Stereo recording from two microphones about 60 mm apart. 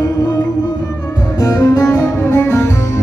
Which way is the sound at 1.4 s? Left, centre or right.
Left.